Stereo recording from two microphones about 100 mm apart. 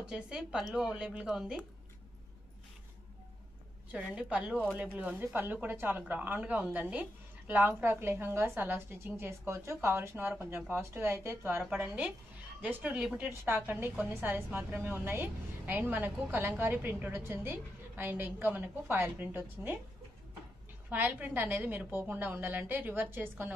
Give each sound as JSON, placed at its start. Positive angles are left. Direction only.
{"t": 0.0, "sound": "speech", "side_deg": -5}
{"t": 3.9, "sound": "a woman's voice", "side_deg": -10}
{"t": 20.9, "sound": "a woman's voice", "side_deg": -15}